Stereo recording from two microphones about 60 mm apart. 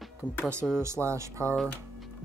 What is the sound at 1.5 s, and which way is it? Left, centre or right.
Speech, centre.